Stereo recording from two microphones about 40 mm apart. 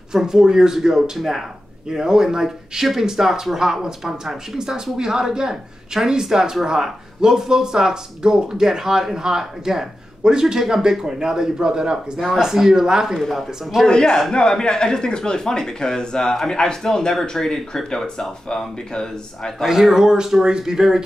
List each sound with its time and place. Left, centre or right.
0.1 s speech: centre
13.8 s speech: centre
19.6 s speech: centre